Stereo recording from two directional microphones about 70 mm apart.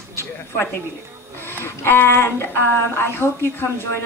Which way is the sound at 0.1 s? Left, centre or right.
Left.